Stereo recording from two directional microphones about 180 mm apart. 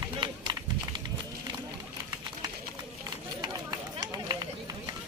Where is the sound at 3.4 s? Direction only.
20° right (ahead or behind).